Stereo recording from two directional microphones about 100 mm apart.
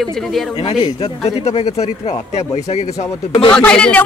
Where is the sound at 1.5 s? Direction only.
90° left.